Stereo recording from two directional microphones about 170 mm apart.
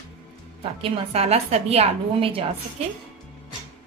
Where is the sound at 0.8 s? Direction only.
35° right (ahead or behind).